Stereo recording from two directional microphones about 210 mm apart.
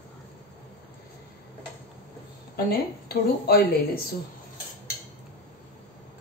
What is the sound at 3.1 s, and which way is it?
Speech, 45° left (ahead or behind).